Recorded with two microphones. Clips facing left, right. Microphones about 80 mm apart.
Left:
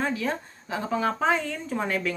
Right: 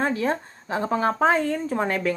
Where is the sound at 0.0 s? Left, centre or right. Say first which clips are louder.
Right 4 dB; right.